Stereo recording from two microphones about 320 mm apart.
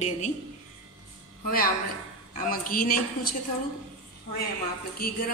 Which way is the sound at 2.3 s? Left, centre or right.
Left.